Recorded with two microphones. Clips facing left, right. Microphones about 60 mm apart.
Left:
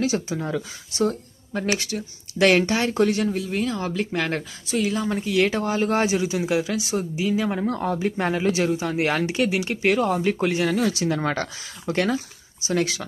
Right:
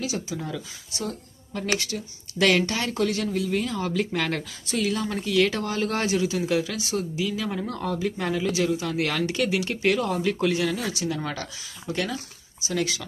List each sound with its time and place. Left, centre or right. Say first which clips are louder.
0.0 s speech: left 6 dB; left
3.6 s speech: left 1 dB; centre; by 12.2 s left
12.6 s speech: left 4 dB; left